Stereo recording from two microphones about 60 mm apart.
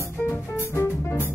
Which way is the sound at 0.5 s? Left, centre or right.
Left.